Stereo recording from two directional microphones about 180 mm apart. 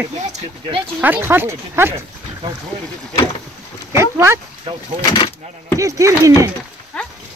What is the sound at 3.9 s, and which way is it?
Speech, 15° right (ahead or behind).